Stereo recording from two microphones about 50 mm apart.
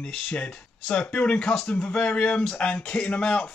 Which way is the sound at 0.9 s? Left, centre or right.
Left.